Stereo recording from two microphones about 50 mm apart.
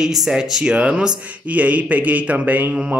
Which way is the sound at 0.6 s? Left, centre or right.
Right.